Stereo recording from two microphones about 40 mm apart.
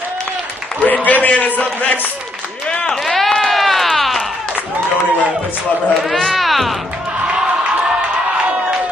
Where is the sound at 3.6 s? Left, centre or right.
Centre.